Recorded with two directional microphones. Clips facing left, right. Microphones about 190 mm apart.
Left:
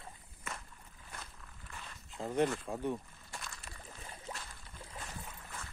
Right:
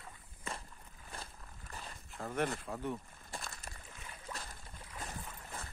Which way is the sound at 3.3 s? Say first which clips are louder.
Right 2 dB; 40° right (ahead or behind).